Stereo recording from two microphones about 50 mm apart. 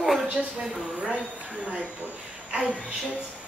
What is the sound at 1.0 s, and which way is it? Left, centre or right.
Speech, right.